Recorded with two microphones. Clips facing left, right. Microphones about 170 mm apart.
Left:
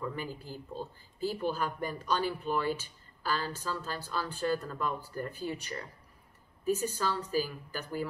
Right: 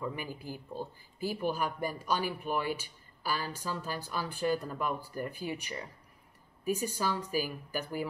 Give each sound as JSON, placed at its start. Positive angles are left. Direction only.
{"t": 0.0, "sound": "a man's voice", "side_deg": -15}